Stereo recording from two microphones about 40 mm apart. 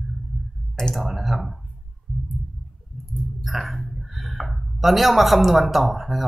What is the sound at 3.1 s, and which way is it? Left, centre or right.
Speech, centre.